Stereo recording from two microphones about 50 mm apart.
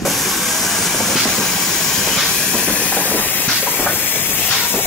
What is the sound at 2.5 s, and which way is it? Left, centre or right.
Steam, left.